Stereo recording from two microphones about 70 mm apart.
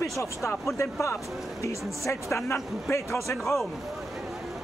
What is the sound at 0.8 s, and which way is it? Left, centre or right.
A woman's voice, left.